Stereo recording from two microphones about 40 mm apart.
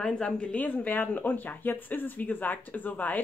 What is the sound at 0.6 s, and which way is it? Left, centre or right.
Speech, left.